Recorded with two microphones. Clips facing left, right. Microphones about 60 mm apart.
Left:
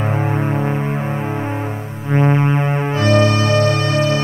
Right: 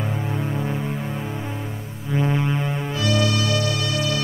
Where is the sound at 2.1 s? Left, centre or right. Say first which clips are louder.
Left 7 dB; left.